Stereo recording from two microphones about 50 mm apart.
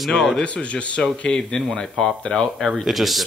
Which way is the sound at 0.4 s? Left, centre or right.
Left.